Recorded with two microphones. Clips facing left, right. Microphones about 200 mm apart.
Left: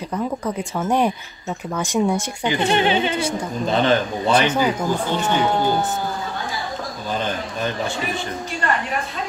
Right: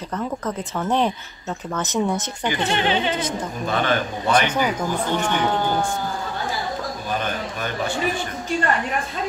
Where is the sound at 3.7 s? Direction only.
25° left (ahead or behind).